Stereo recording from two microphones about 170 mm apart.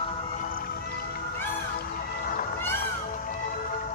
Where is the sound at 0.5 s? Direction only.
65° left (ahead or behind).